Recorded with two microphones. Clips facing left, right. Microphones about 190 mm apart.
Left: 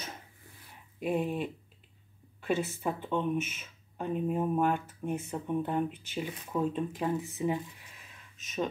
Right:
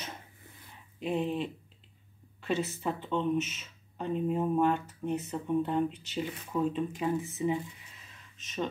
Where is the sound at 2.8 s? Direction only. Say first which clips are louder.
Even; 10° left (ahead or behind).